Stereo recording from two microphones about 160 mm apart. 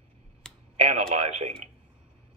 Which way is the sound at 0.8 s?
40° right (ahead or behind).